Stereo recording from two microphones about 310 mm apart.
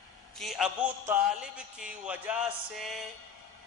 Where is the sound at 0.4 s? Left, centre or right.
Centre.